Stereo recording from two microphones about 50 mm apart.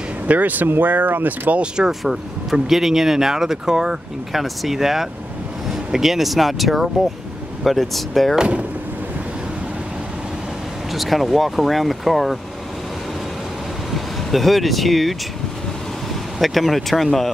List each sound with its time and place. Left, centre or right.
0.3 s speech: right
1.5 s speech: right
1.9 s speech: centre
8.4 s speech: right
10.9 s speech: centre
13.9 s speech: centre
16.3 s speech: centre